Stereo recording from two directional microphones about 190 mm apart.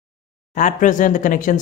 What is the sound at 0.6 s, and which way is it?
Speech, 40° left (ahead or behind).